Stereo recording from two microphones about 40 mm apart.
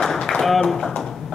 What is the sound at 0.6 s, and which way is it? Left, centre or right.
Speech, centre.